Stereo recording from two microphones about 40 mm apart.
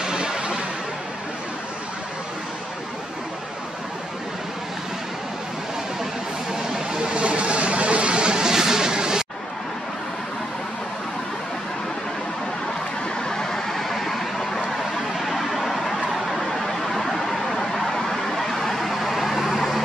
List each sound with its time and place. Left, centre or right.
0.0 s music: right
6.5 s a sound: right
13.3 s vehicle: centre